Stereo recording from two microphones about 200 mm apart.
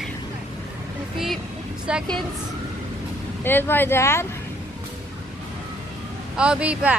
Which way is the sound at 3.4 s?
10° left (ahead or behind).